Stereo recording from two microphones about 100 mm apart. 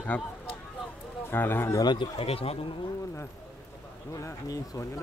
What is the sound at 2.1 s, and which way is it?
Speech, 75° left (ahead or behind).